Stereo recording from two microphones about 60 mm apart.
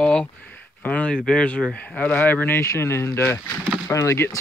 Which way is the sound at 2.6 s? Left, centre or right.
Left.